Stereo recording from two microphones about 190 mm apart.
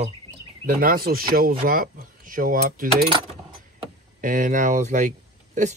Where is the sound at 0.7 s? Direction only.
50° right (ahead or behind).